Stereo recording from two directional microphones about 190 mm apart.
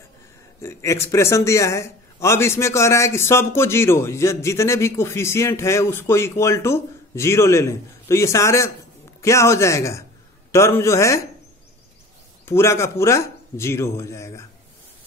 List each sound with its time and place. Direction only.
0.6 s speech: 15° left (ahead or behind)
12.4 s speech: 15° left (ahead or behind)